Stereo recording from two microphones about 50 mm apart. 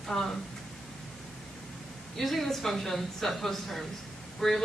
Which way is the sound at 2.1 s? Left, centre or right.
Centre.